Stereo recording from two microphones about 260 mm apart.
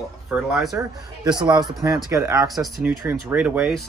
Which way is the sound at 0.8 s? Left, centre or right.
Centre.